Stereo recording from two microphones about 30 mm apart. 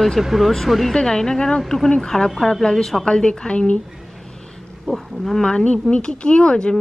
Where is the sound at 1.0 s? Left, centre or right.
Left.